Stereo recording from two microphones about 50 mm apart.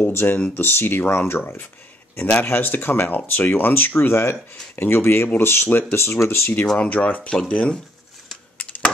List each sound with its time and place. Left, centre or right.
0.0 s speech: left
1.2 s speech: left
2.1 s speech: left
2.5 s speech: left
6.1 s speech: left
6.8 s speech: left